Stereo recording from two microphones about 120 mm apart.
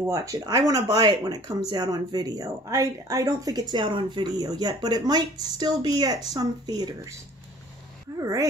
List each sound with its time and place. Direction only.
0.1 s speech: 30° right (ahead or behind)
8.2 s speech: 25° right (ahead or behind)